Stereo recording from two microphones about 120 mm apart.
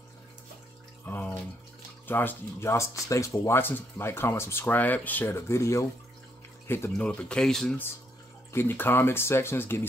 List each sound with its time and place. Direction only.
1.0 s a sound: 15° left (ahead or behind)
2.0 s speech: 15° left (ahead or behind)
7.1 s speech: 5° left (ahead or behind)
8.5 s speech: 15° left (ahead or behind)